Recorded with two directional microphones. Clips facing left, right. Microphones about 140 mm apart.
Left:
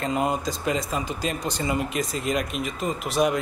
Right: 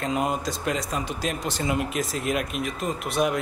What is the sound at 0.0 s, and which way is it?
Speech, centre (ahead or behind).